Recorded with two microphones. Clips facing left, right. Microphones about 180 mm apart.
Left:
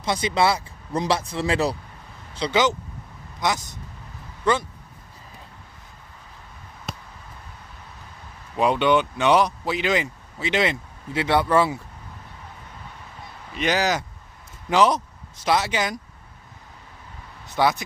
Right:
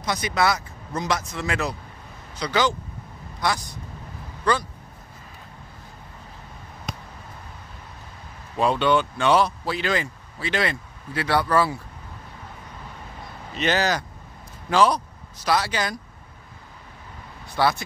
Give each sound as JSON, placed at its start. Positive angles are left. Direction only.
{"t": 0.0, "sound": "speech", "side_deg": 25}
{"t": 6.9, "sound": "basketball bounce", "side_deg": 5}
{"t": 8.5, "sound": "speech", "side_deg": 15}
{"t": 13.6, "sound": "speech", "side_deg": 15}
{"t": 17.5, "sound": "speech", "side_deg": 15}